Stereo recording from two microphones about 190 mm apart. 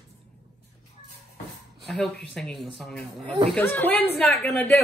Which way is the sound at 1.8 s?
Centre (ahead or behind).